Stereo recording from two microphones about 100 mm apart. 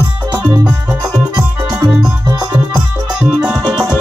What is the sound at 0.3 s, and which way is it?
Music, 10° right (ahead or behind).